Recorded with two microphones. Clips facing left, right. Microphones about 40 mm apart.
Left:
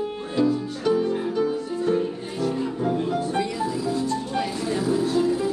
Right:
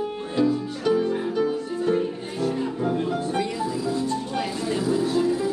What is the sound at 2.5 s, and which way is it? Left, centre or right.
Music, centre.